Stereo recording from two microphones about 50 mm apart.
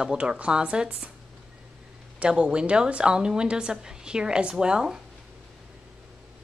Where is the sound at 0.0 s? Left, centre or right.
Centre.